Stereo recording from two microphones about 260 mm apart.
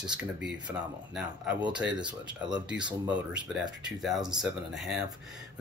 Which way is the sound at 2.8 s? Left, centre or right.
Centre.